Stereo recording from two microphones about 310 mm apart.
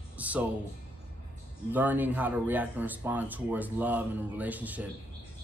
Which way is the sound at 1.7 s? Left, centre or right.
Centre.